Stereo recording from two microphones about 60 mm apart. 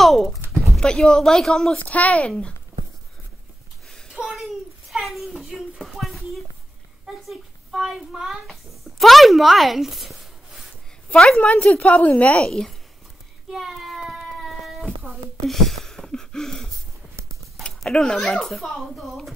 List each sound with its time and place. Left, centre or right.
0.0 s a sound: centre
0.7 s speech: centre
1.8 s a woman's voice: left
4.1 s a sound: centre
8.5 s speech: centre
11.1 s a woman's voice: centre
12.4 s speech: centre
13.5 s child singing: centre
14.4 s a sound: centre
17.1 s clip-clop: right
17.8 s speech: centre